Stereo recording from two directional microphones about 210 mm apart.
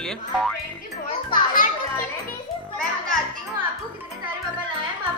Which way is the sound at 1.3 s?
40° left (ahead or behind).